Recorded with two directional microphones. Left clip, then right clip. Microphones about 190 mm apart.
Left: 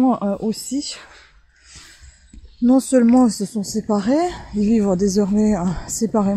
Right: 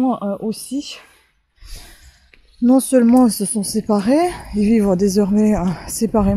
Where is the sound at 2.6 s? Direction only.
5° right (ahead or behind).